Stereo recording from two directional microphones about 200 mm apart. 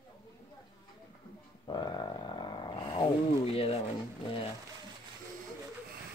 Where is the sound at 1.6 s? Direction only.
20° left (ahead or behind).